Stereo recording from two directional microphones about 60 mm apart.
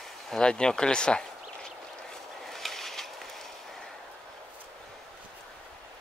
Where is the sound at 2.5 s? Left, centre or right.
Centre.